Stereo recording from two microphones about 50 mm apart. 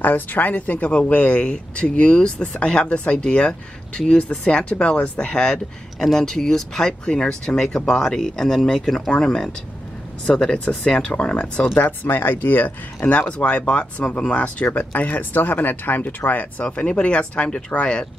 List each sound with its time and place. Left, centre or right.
0.0 s speech: left; by 11.6 s centre
11.6 s speech: left
16.6 s speech: left